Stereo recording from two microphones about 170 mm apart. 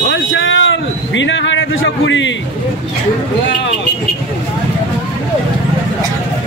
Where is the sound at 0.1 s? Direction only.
90° left.